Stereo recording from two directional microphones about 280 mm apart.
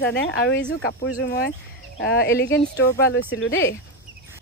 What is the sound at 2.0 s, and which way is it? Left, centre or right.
Speech, left.